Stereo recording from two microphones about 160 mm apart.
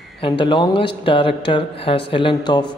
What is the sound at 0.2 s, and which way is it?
A man's voice, 30° left (ahead or behind).